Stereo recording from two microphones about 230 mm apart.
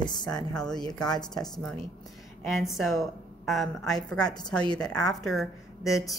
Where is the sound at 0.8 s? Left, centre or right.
Centre.